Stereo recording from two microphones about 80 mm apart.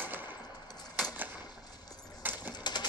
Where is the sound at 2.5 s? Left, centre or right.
Left.